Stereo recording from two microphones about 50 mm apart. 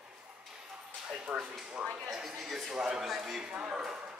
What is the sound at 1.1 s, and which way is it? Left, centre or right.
Speech, right.